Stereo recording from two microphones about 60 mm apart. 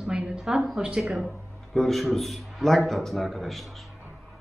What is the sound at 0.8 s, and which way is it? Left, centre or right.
Speech, centre.